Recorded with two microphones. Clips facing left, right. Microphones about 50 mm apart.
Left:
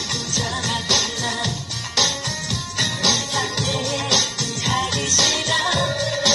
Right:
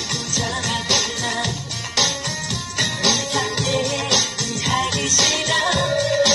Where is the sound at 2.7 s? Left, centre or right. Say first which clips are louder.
Right 1 dB; centre.